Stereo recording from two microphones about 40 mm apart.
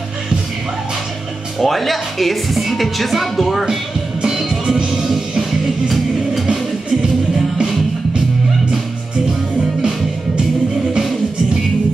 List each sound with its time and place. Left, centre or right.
1.6 s a woman's voice: centre
4.5 s music: right
5.4 s music: centre
6.4 s music: centre
9.8 s music: right